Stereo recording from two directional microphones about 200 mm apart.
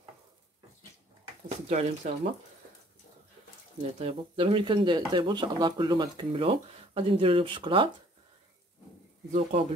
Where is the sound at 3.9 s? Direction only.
25° right (ahead or behind).